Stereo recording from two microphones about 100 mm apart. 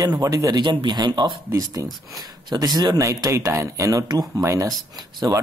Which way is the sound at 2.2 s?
40° right (ahead or behind).